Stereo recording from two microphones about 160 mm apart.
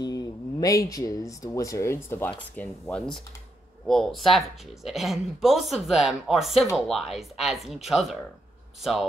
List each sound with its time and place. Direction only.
0.0 s speech: 25° left (ahead or behind); by 8.2 s centre (ahead or behind)